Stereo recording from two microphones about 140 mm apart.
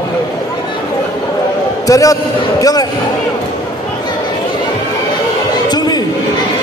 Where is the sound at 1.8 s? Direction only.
25° left (ahead or behind).